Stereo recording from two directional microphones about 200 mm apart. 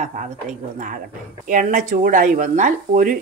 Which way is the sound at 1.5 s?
40° right (ahead or behind).